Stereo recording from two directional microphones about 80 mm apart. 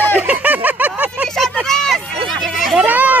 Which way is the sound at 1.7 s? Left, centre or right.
Centre.